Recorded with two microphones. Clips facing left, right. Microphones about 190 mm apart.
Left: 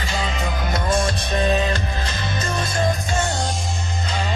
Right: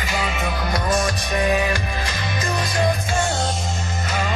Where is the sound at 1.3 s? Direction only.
15° right (ahead or behind).